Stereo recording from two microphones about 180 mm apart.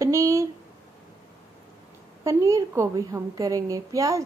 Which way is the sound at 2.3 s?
15° right (ahead or behind).